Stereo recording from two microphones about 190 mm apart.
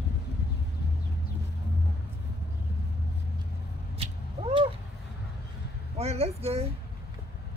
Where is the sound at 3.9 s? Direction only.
30° right (ahead or behind).